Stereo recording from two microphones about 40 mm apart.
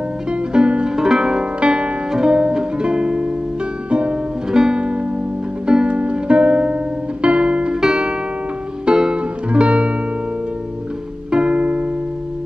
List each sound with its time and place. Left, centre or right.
0.3 s music: right
0.9 s music: centre
1.4 s music: right
4.5 s music: centre
4.7 s music: right
11.3 s music: right